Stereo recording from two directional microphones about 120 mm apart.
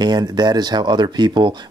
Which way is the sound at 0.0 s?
35° right (ahead or behind).